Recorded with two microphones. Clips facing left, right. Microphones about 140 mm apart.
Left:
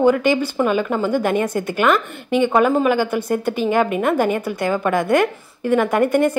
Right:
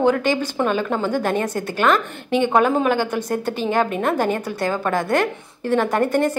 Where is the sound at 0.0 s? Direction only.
10° left (ahead or behind).